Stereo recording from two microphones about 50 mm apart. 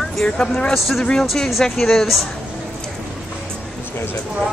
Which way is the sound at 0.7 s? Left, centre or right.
Centre.